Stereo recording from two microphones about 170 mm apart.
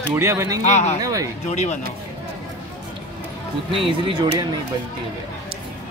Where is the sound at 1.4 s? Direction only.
40° left (ahead or behind).